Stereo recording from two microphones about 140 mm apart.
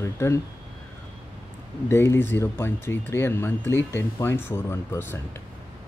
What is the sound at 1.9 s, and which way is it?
Speech, 15° left (ahead or behind).